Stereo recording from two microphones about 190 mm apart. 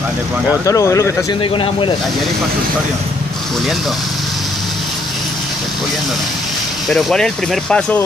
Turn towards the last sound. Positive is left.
turn(degrees=5)  # may be behind; listen again after turning